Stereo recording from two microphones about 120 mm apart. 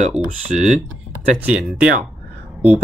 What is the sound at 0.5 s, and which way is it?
Speech, 90° right.